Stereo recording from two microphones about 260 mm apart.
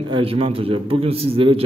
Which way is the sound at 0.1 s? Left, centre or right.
Right.